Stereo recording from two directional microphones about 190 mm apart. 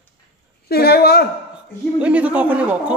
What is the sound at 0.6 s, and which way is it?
Speech, 55° left (ahead or behind).